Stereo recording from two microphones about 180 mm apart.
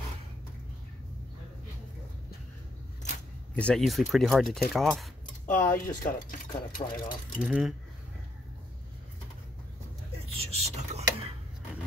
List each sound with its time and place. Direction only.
3.5 s speech: 5° left (ahead or behind)
5.2 s speech: 45° left (ahead or behind)
7.4 s speech: 5° right (ahead or behind)
10.3 s whispering: 35° right (ahead or behind)